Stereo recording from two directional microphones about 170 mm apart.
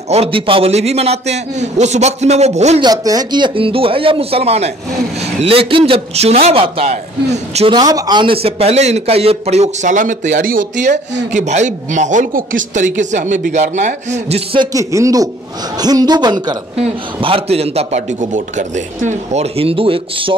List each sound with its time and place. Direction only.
0.1 s a man's voice: 35° right (ahead or behind)
2.8 s a man's voice: 20° right (ahead or behind)
14.7 s a man's voice: 20° right (ahead or behind)
16.7 s a man's voice: 35° right (ahead or behind)